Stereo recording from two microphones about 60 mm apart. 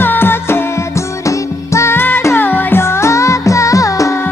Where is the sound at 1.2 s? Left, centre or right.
Left.